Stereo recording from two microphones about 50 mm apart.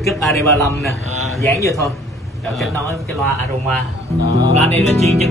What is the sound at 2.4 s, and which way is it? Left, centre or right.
Speech, centre.